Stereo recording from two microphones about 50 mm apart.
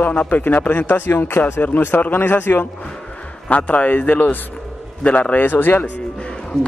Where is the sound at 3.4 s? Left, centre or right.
Left.